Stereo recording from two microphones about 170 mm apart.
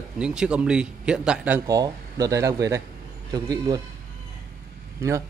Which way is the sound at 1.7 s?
20° right (ahead or behind).